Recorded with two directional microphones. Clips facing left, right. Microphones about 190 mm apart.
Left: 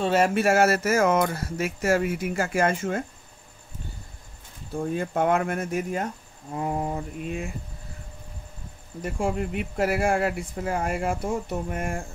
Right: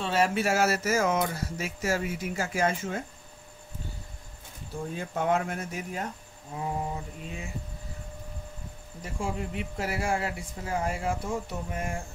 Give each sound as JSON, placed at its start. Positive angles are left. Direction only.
{"t": 0.0, "sound": "speech", "side_deg": 45}
{"t": 4.9, "sound": "speech", "side_deg": 55}
{"t": 9.0, "sound": "speech", "side_deg": 60}